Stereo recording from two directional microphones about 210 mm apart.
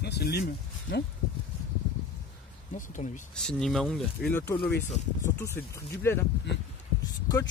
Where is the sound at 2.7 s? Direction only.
35° left (ahead or behind).